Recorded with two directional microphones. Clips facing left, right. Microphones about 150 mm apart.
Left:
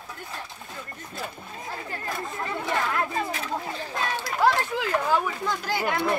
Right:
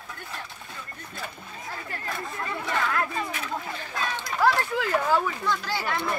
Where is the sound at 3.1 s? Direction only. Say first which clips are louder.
Left 2 dB; 30° left (ahead or behind).